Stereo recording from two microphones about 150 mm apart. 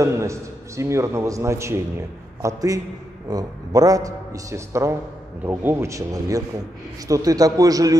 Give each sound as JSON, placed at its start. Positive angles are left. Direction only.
{"t": 0.0, "sound": "a man's voice", "side_deg": -20}